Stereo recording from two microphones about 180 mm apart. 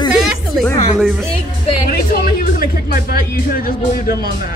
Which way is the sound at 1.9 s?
55° left (ahead or behind).